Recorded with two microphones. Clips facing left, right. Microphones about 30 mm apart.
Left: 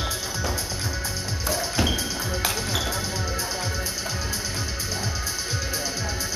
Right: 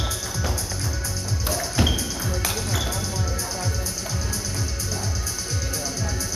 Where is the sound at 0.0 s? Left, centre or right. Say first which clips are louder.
Even; left.